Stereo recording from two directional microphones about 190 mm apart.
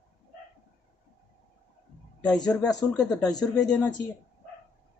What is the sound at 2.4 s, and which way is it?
Speech, 5° left (ahead or behind).